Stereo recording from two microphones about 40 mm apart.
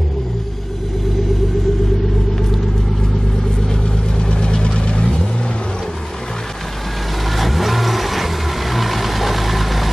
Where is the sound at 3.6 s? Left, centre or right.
Left.